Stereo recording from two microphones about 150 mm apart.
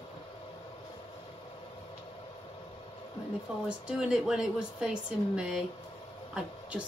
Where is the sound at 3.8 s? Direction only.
5° right (ahead or behind).